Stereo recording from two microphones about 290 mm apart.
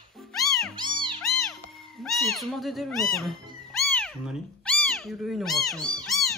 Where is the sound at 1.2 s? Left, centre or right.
Centre.